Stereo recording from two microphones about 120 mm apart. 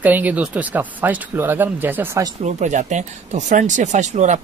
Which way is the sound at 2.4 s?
80° right.